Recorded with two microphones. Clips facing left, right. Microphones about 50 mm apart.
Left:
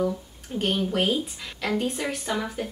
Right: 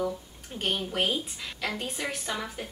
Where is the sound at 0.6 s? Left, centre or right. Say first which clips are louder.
Left 4 dB; centre.